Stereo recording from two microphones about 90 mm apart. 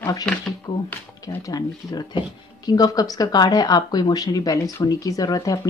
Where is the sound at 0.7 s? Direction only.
50° left (ahead or behind).